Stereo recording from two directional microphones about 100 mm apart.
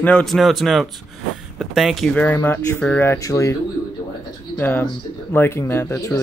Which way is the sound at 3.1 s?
35° left (ahead or behind).